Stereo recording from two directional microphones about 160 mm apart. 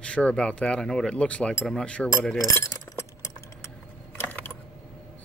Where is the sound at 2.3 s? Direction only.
20° left (ahead or behind).